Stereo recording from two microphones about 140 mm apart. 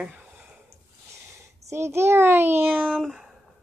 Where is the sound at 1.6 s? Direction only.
20° right (ahead or behind).